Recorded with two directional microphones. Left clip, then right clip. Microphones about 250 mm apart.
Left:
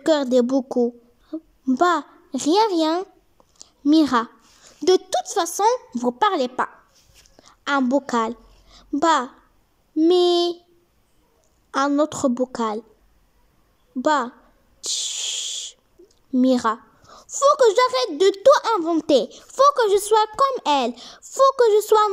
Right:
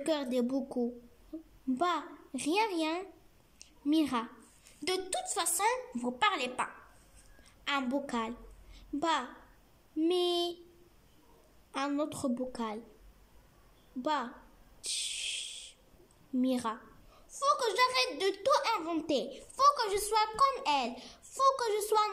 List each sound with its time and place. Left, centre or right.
0.0 s a child's voice: left
1.3 s child singing: left
1.7 s a child's voice: left
3.5 s a sound: left
4.8 s a child's voice: left
11.7 s a child's voice: left
14.0 s a child's voice: left
14.8 s a sound: left
16.3 s a child's voice: left